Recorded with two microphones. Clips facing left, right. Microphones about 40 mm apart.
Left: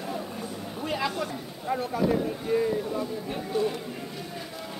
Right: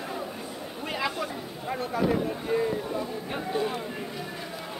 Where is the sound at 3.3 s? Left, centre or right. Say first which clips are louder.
Left 1 dB; centre.